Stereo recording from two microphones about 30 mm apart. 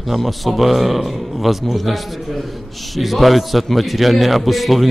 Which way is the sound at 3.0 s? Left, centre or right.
Centre.